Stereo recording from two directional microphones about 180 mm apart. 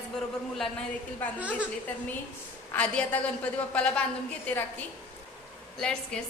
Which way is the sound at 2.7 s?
5° left (ahead or behind).